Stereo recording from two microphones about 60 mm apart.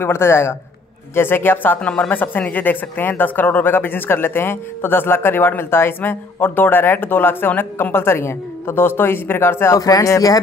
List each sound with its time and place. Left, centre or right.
0.0 s a man's voice: left
1.8 s speech: centre
2.0 s speech: left
9.8 s speech: left